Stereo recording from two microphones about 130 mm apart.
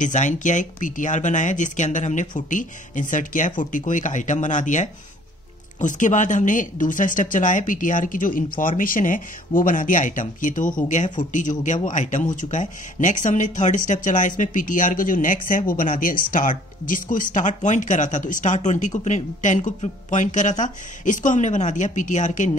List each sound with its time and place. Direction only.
0.0 s speech: 70° left (ahead or behind); by 10.8 s 90° left
11.3 s speech: 75° left (ahead or behind)